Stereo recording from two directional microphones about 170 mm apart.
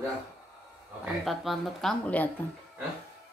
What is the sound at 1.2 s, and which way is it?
Speech, centre (ahead or behind).